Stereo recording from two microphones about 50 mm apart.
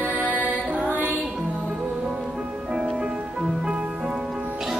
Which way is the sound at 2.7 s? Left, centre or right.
Centre.